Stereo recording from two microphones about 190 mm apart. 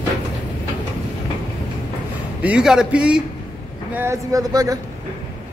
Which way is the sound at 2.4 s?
5° right (ahead or behind).